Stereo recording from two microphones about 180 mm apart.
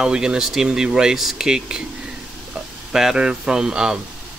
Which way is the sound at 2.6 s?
5° right (ahead or behind).